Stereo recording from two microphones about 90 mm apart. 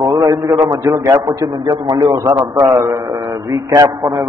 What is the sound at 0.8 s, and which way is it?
A man's voice, 35° right (ahead or behind).